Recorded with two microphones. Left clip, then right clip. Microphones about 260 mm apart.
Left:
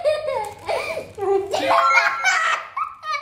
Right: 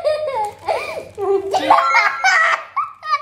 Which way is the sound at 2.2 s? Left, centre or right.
Right.